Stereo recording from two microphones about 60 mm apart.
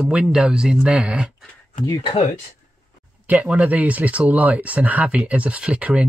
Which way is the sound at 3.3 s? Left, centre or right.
Right.